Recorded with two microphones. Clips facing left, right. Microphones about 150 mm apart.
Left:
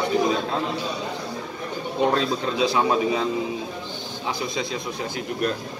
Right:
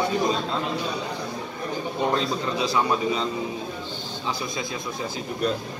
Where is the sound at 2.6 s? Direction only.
20° left (ahead or behind).